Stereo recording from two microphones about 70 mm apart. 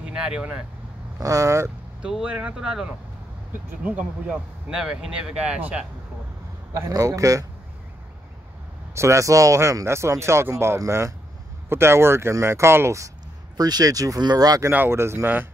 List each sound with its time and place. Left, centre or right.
0.0 s speech: centre
1.2 s speech: right
2.0 s speech: centre
6.9 s speech: right
8.9 s speech: right
13.6 s speech: right
14.7 s speech: right